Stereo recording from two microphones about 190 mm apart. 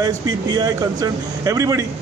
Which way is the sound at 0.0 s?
20° right (ahead or behind).